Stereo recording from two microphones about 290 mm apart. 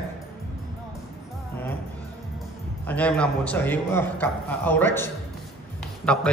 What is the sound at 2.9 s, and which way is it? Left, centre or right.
A woman's voice, centre.